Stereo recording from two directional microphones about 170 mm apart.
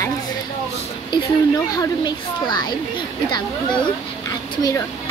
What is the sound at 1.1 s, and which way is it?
Speech, 20° left (ahead or behind).